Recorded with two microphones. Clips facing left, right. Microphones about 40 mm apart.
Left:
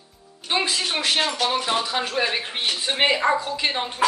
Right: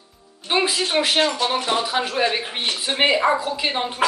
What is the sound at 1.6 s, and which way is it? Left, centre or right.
Speech, right.